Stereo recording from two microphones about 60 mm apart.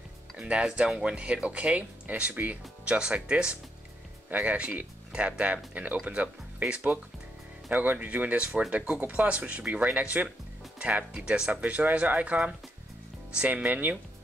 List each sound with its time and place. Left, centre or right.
0.4 s speech: centre
2.8 s speech: centre
7.7 s speech: right